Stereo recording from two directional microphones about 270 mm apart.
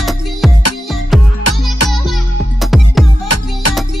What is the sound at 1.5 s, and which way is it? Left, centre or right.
Music, left.